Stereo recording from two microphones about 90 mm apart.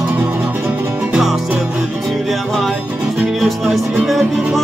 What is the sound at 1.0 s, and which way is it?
Music, 5° right (ahead or behind).